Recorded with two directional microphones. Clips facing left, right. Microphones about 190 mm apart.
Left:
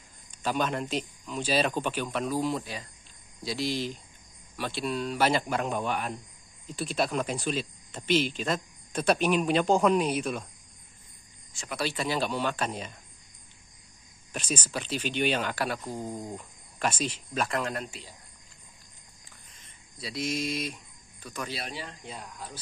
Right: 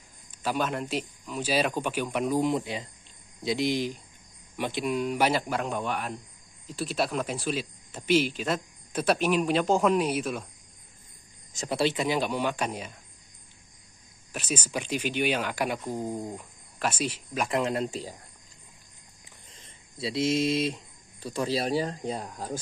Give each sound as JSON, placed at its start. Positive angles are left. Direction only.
{"t": 0.4, "sound": "speech", "side_deg": -5}
{"t": 11.5, "sound": "speech", "side_deg": -40}
{"t": 11.8, "sound": "speech", "side_deg": -20}
{"t": 14.3, "sound": "speech", "side_deg": -10}
{"t": 17.5, "sound": "speech", "side_deg": -25}
{"t": 19.5, "sound": "speech", "side_deg": -25}